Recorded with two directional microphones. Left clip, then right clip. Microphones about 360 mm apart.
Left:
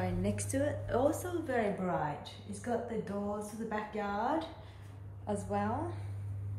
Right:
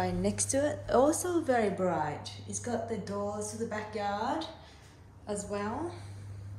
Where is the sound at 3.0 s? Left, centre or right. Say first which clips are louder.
Right 3 dB; centre.